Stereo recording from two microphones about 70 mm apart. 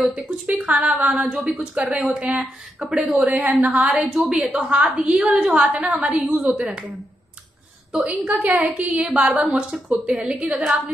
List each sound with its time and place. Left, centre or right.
0.0 s speech: centre
3.3 s a woman's voice: right
3.9 s a woman's voice: centre
7.9 s speech: centre